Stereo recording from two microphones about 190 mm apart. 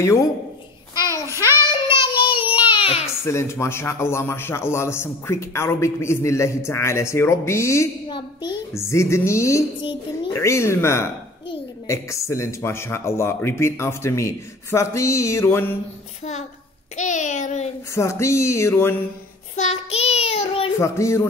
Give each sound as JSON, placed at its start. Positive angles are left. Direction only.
{"t": 0.0, "sound": "a man's voice", "side_deg": 15}
{"t": 0.9, "sound": "child singing", "side_deg": 20}
{"t": 3.3, "sound": "a man's voice", "side_deg": 15}
{"t": 9.8, "sound": "a child's voice", "side_deg": 25}
{"t": 10.3, "sound": "a man's voice", "side_deg": 15}
{"t": 16.9, "sound": "child singing", "side_deg": 40}
{"t": 17.9, "sound": "a man's voice", "side_deg": 15}
{"t": 19.5, "sound": "child singing", "side_deg": 35}
{"t": 20.8, "sound": "a man's voice", "side_deg": 15}